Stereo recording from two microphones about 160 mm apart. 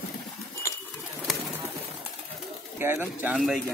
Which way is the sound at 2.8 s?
15° right (ahead or behind).